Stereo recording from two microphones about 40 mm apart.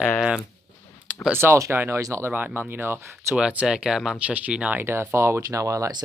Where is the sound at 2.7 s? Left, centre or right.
Right.